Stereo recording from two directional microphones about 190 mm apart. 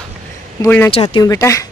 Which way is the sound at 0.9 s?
25° left (ahead or behind).